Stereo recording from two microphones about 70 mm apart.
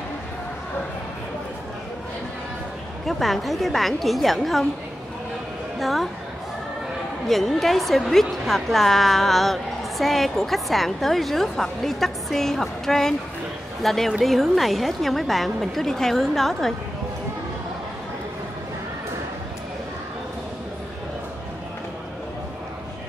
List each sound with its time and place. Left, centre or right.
3.1 s a woman's voice: centre
5.8 s a woman's voice: centre
7.2 s a woman's voice: centre